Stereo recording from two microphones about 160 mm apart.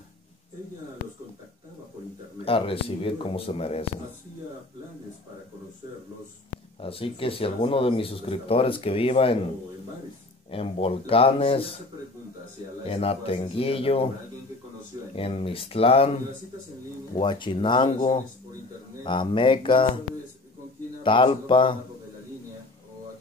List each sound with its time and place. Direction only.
2.4 s speech: 35° left (ahead or behind)
6.8 s speech: 35° left (ahead or behind)
10.5 s speech: 35° left (ahead or behind)
12.8 s speech: 35° left (ahead or behind)
15.1 s speech: 35° left (ahead or behind)
17.2 s speech: 30° left (ahead or behind)
19.0 s speech: 30° left (ahead or behind)
21.0 s speech: 30° left (ahead or behind)